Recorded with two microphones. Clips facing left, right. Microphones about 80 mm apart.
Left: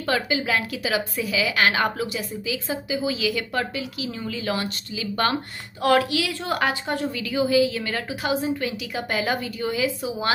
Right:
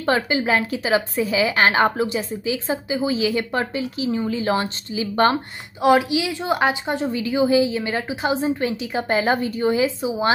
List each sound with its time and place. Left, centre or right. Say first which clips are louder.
0.0 s a woman's voice: right 4 dB; right